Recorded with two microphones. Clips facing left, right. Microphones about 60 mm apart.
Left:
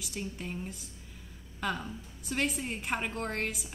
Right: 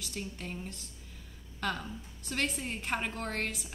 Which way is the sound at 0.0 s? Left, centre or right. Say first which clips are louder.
Left 2 dB; centre.